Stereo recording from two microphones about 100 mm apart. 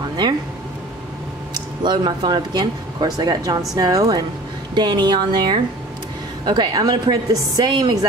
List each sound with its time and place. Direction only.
1.5 s a woman's voice: 50° right (ahead or behind)